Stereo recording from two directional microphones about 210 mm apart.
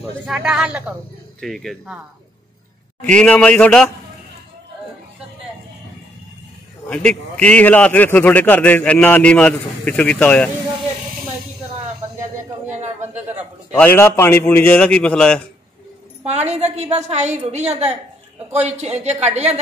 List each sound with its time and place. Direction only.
0.3 s a man's voice: centre (ahead or behind)
3.0 s a man's voice: 5° left (ahead or behind)
6.9 s a man's voice: 5° left (ahead or behind)
12.2 s a sound: 35° right (ahead or behind)
13.3 s a sound: 5° right (ahead or behind)
13.7 s a man's voice: 10° left (ahead or behind)
16.3 s a woman's voice: 30° right (ahead or behind)